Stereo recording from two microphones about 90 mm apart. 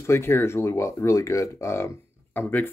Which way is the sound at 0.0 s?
30° left (ahead or behind).